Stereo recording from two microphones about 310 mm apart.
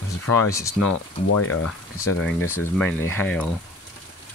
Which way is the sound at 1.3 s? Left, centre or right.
Left.